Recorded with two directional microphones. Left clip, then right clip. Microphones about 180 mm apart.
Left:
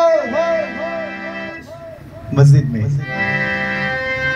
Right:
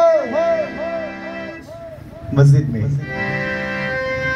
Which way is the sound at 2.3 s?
60° left (ahead or behind).